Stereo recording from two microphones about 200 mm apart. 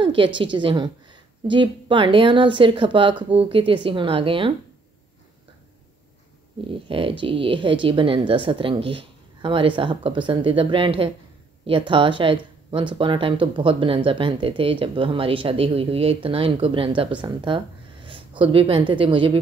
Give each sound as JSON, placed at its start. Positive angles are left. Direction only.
{"t": 0.0, "sound": "speech", "side_deg": -25}
{"t": 6.7, "sound": "speech", "side_deg": -25}